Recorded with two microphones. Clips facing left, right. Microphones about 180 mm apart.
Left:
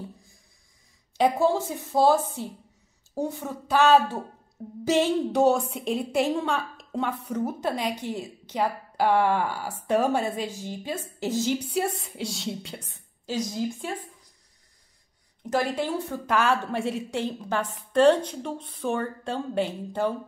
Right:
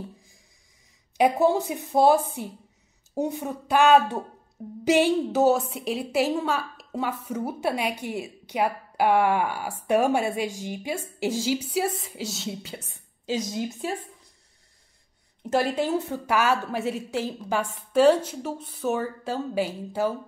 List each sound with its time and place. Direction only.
1.1 s a woman's voice: 15° right (ahead or behind)
13.5 s a woman's voice: 20° right (ahead or behind)
15.4 s a woman's voice: 25° right (ahead or behind)
15.7 s a woman's voice: 15° right (ahead or behind)